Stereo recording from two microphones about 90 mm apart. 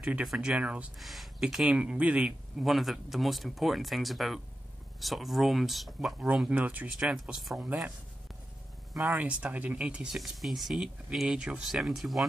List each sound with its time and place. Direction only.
0.0 s speech: 5° right (ahead or behind)
0.9 s speech: centre (ahead or behind)
2.6 s speech: centre (ahead or behind); by 6.9 s 20° right (ahead or behind)
7.0 s speech: 5° right (ahead or behind)
8.9 s speech: 15° right (ahead or behind); by 12.3 s centre (ahead or behind)